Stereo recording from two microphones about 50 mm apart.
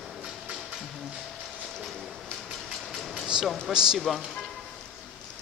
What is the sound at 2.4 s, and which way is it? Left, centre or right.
Vehicle, centre.